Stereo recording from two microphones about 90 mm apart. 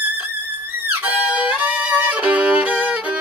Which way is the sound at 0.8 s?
20° right (ahead or behind).